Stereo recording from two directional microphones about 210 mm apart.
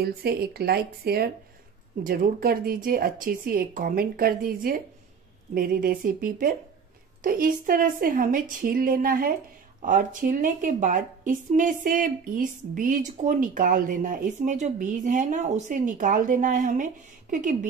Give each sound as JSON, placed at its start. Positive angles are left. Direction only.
{"t": 0.0, "sound": "a woman's voice", "side_deg": -50}